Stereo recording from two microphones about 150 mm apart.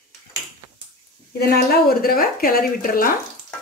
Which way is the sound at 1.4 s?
90° left.